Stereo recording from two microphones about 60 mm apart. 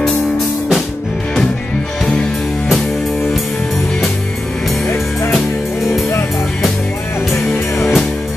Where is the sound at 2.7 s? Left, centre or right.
Centre.